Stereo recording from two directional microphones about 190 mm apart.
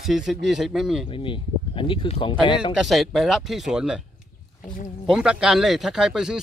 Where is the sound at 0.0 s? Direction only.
Centre (ahead or behind).